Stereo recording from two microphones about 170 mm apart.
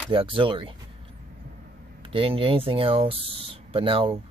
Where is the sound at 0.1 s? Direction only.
30° right (ahead or behind).